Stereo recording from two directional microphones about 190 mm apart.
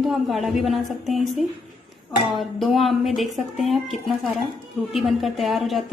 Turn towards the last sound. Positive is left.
turn(degrees=0)  # may be behind; listen again after turning